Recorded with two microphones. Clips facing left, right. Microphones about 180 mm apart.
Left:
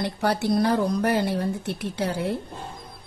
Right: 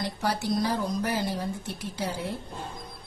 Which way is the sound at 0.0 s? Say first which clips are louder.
Left 5 dB; 60° left (ahead or behind).